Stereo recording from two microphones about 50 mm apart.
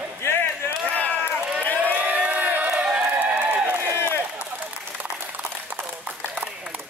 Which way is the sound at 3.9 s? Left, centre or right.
Left.